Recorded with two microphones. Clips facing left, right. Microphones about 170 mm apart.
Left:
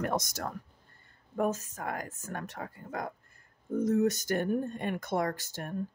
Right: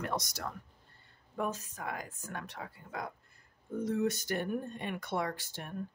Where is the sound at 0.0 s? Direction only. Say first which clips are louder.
Left 5 dB; 50° left (ahead or behind).